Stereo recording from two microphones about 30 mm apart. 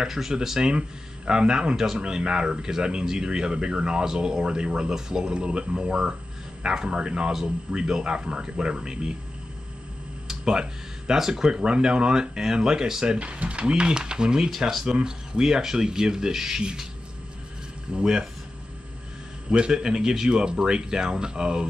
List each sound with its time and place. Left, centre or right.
0.0 s speech: centre
0.7 s speech: right
4.4 s speech: right
10.2 s a sound: right
11.1 s speech: centre
13.2 s speech: right; by 16.6 s centre
17.9 s speech: right
19.7 s speech: right